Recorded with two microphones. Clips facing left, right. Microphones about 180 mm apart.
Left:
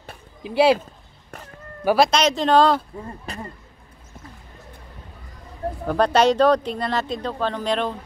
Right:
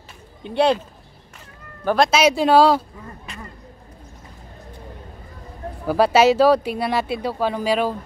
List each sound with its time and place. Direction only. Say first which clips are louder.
0.4 s speech: left 1 dB; 5° left (ahead or behind)
2.0 s speech: right 3 dB; 10° right (ahead or behind)
3.3 s speech: left 5 dB; 35° left (ahead or behind)
5.9 s speech: right 2 dB; 5° right (ahead or behind)